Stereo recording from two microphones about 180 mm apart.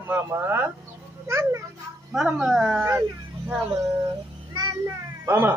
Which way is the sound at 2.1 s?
5° right (ahead or behind).